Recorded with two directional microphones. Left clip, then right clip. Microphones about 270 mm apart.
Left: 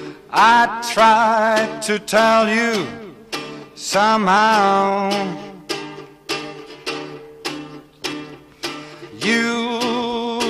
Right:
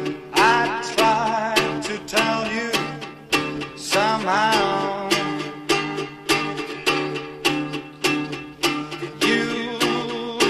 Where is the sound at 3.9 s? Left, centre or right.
Left.